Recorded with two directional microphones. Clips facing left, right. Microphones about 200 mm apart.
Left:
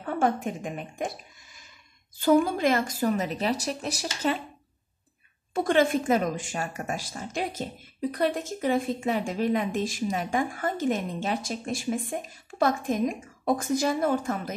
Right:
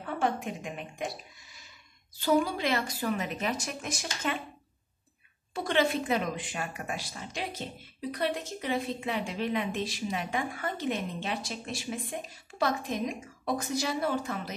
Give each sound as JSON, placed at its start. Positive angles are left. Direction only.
{"t": 0.0, "sound": "speech", "side_deg": 45}
{"t": 5.5, "sound": "a woman's voice", "side_deg": 50}